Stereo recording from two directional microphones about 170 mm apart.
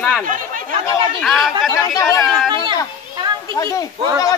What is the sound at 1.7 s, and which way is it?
Speech, 20° left (ahead or behind).